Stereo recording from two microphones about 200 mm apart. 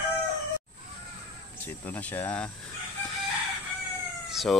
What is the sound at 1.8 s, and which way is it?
Speech, 10° left (ahead or behind).